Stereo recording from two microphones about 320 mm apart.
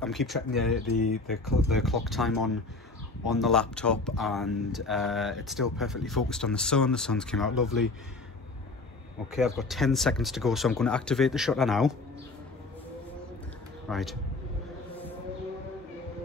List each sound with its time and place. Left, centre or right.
0.0 s speech: centre
9.3 s speech: centre
13.8 s a man's voice: centre